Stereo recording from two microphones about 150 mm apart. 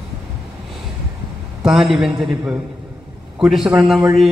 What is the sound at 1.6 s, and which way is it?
A man's voice, 5° right (ahead or behind).